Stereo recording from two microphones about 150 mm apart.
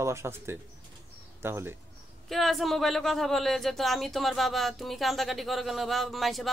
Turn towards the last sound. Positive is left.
turn(degrees=0)  # may be behind; listen again after turning